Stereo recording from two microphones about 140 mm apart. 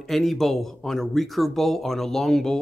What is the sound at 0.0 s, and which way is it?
Speech, centre (ahead or behind).